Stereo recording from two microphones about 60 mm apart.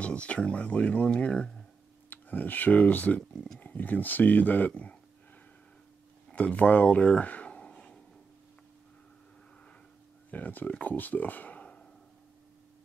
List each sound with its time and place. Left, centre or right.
0.0 s speech: left
2.0 s speech: left
6.3 s speech: centre
10.3 s speech: left